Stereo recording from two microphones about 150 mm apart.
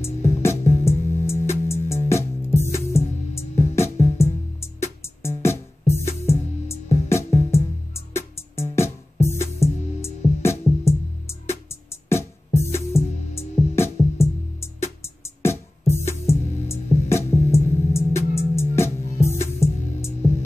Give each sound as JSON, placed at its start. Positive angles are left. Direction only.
{"t": 0.4, "sound": "music", "side_deg": 15}
{"t": 16.1, "sound": "music", "side_deg": 15}